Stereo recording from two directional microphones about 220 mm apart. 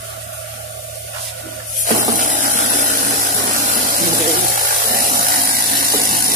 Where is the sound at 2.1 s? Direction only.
35° right (ahead or behind).